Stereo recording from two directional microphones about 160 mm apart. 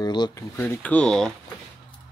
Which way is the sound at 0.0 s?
25° left (ahead or behind).